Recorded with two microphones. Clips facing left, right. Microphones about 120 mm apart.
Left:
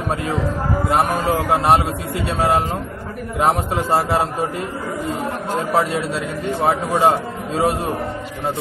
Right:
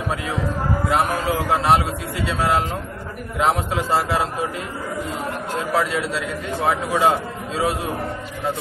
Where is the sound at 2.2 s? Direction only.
50° left (ahead or behind).